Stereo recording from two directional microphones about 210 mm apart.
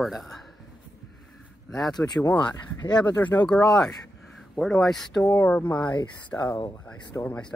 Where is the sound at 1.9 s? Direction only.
20° left (ahead or behind).